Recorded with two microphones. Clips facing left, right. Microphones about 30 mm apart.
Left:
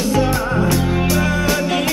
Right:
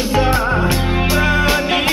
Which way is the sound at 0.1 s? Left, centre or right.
Right.